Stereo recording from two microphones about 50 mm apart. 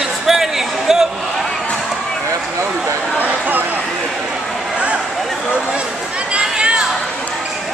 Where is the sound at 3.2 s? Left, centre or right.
Right.